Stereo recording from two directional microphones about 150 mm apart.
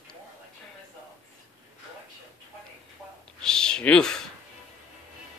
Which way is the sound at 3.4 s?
5° left (ahead or behind).